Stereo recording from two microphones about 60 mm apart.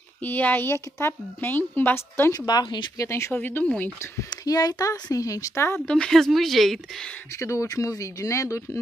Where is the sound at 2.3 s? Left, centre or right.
Left.